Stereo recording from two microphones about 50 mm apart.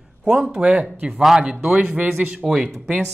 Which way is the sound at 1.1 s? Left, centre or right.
Centre.